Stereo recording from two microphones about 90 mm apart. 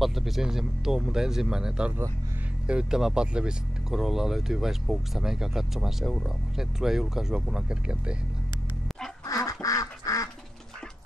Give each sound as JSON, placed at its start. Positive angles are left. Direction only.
{"t": 0.0, "sound": "speech", "side_deg": 0}
{"t": 9.2, "sound": "duck", "side_deg": 40}